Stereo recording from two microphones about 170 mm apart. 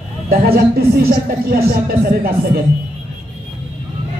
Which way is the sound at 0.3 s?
65° right (ahead or behind).